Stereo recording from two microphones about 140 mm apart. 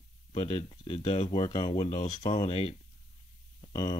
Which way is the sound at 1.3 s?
30° left (ahead or behind).